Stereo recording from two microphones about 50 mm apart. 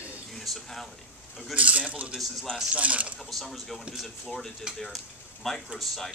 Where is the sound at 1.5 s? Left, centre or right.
Right.